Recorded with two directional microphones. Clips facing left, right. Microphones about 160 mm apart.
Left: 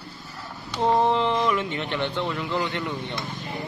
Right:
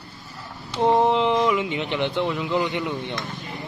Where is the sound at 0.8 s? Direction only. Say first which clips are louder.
Right 2 dB; 15° right (ahead or behind).